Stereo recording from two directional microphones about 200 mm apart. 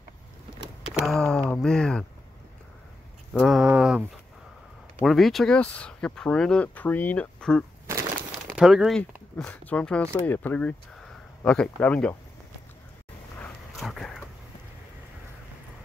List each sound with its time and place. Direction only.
0.9 s speech: centre (ahead or behind)
3.3 s speech: centre (ahead or behind)
5.0 s speech: centre (ahead or behind)
13.4 s dog: centre (ahead or behind)